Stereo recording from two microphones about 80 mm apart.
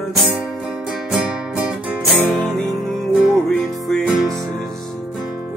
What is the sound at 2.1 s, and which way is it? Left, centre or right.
Music, right.